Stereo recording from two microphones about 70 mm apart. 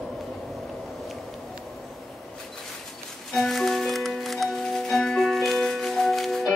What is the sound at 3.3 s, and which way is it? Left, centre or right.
Music, centre.